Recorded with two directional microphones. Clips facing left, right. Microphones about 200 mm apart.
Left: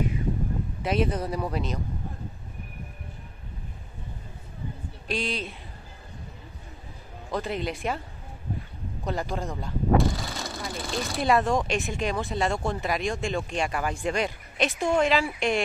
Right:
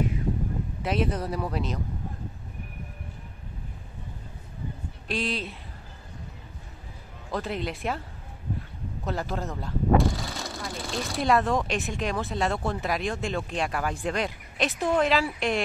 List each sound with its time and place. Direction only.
0.8 s speech: centre (ahead or behind)
5.0 s speech: centre (ahead or behind)
7.2 s speech: centre (ahead or behind)
9.0 s speech: centre (ahead or behind)